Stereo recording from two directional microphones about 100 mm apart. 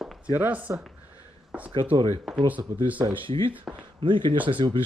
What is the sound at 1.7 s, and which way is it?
Speech, 55° right (ahead or behind).